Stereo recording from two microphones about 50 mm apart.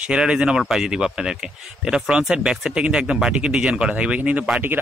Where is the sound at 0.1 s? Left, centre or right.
Centre.